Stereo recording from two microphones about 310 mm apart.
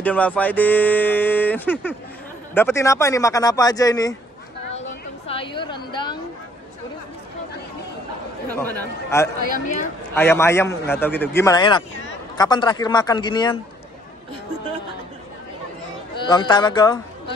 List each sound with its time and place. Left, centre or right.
0.0 s speech: centre
4.7 s a sound: centre
8.5 s speech: centre
16.2 s speech: centre